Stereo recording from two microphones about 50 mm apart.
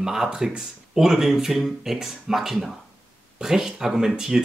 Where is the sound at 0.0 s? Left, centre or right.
Centre.